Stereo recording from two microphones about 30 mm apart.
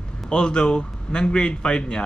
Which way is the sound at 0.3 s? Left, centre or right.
Left.